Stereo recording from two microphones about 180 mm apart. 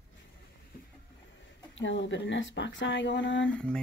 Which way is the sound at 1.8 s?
90° left.